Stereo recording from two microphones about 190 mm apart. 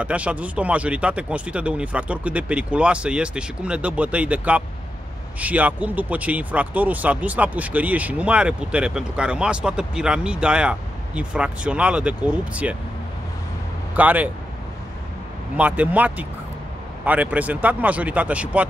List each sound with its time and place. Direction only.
0.0 s speech: 5° right (ahead or behind)
13.9 s speech: 10° right (ahead or behind)
15.5 s speech: 5° right (ahead or behind)